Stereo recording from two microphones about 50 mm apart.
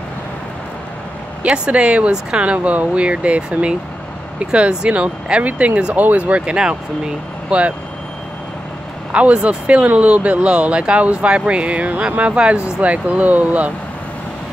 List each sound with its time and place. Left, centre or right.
1.4 s speech: right
9.1 s speech: right